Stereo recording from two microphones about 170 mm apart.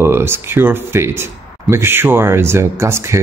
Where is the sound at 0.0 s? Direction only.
15° right (ahead or behind).